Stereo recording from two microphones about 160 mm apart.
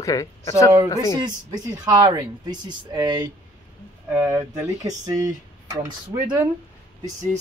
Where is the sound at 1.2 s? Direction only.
25° right (ahead or behind).